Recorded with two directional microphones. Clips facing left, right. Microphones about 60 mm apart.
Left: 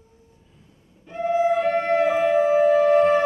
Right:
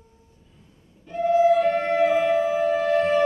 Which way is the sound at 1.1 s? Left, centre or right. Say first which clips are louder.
Right 3 dB; centre.